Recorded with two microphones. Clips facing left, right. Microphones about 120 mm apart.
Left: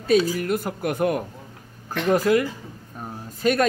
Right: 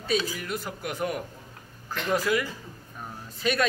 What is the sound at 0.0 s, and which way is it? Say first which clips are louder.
Speech: left 9 dB; 50° left (ahead or behind).